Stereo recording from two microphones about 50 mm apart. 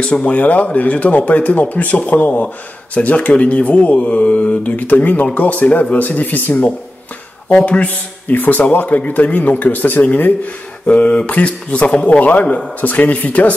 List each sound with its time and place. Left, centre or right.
0.0 s a man's voice: left